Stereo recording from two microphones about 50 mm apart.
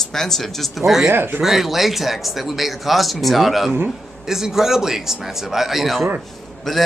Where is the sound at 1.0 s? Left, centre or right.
Right.